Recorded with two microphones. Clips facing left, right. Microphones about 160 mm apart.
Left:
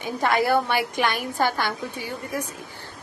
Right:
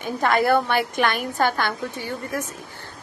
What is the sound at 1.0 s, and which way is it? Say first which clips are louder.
Speech: right 1 dB; 50° right (ahead or behind).